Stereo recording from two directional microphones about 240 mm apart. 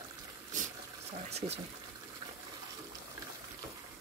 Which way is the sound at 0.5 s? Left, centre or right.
Right.